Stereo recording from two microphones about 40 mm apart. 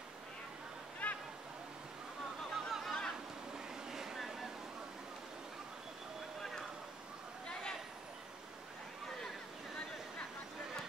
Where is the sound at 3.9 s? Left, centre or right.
Centre.